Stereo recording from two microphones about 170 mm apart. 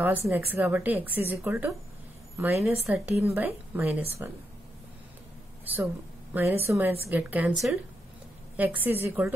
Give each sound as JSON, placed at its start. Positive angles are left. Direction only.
{"t": 0.0, "sound": "a woman's voice", "side_deg": -10}
{"t": 6.3, "sound": "speech", "side_deg": -15}